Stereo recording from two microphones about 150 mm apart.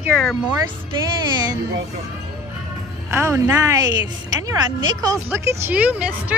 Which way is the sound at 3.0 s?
20° right (ahead or behind).